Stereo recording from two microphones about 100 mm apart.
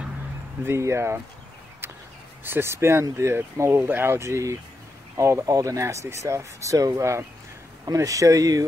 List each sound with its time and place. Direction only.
0.7 s speech: 30° right (ahead or behind)
2.4 s speech: 25° right (ahead or behind)